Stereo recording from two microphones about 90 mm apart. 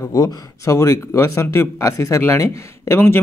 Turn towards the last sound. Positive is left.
turn(degrees=20)  # may be behind; listen again after turning